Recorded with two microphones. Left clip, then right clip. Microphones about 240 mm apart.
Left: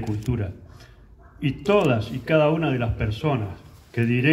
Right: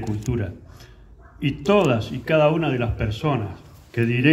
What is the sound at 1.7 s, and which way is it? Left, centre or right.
Speech, right.